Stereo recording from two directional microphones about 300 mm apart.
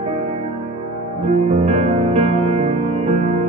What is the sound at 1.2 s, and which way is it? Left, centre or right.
Music, right.